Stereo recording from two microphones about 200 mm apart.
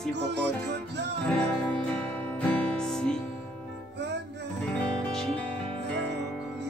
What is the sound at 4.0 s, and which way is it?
Music, 60° right (ahead or behind).